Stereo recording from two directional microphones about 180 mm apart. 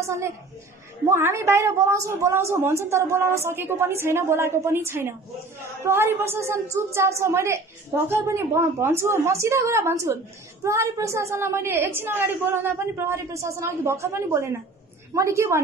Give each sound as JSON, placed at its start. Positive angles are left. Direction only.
{"t": 1.0, "sound": "a woman's voice", "side_deg": -15}